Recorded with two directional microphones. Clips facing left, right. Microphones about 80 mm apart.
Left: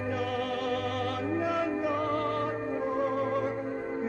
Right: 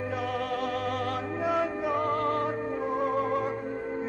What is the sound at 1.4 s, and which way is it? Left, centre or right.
Music, right.